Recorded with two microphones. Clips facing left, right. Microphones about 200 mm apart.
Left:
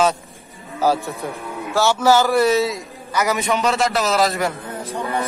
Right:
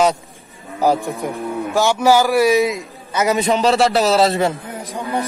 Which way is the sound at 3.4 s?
35° right (ahead or behind).